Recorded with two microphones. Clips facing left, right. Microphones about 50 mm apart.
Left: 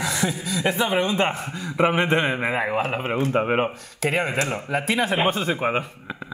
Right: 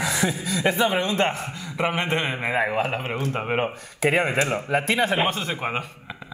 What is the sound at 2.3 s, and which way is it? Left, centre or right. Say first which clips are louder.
Speech: even; centre.